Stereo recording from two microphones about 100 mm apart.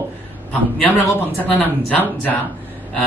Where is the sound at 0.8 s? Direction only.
20° left (ahead or behind).